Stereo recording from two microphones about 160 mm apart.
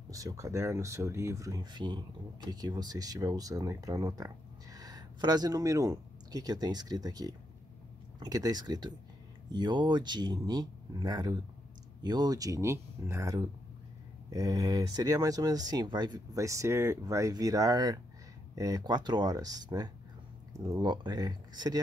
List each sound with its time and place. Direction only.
0.1 s speech: 20° right (ahead or behind)